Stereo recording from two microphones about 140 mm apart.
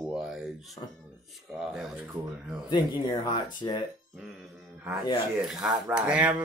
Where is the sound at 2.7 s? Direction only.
35° left (ahead or behind).